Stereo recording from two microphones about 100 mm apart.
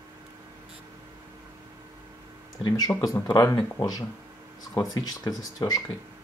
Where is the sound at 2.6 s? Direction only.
45° left (ahead or behind).